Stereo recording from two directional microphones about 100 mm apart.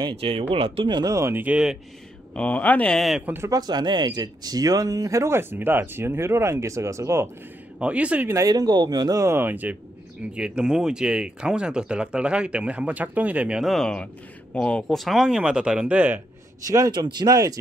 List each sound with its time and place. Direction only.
0.2 s speech: 65° right (ahead or behind)
0.9 s speech: 35° right (ahead or behind)
1.3 s speech: 15° right (ahead or behind)
2.3 s speech: 15° left (ahead or behind)
3.0 s speech: centre (ahead or behind)
3.4 s speech: 40° right (ahead or behind)
7.8 s speech: 10° right (ahead or behind)
8.3 s speech: 35° right (ahead or behind)
9.2 s speech: 25° right (ahead or behind)
16.6 s speech: 35° right (ahead or behind)